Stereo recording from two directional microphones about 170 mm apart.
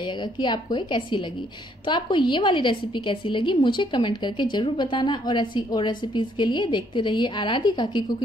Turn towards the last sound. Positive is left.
turn(degrees=25)  # may be behind; listen again after turning